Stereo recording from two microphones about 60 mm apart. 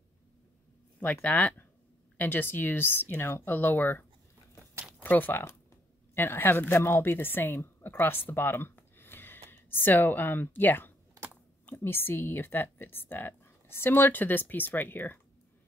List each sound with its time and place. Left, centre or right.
1.2 s speech: left
5.0 s a woman's voice: left